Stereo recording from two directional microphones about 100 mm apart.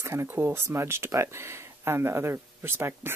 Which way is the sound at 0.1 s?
25° right (ahead or behind).